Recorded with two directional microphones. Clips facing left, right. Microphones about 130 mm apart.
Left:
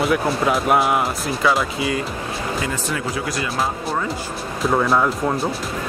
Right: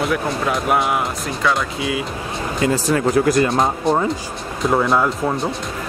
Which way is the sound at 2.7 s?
45° right (ahead or behind).